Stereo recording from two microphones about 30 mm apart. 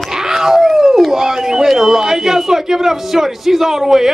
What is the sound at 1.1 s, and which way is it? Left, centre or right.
A man's voice, centre.